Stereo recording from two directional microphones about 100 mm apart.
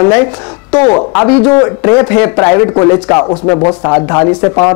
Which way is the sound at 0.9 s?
20° left (ahead or behind).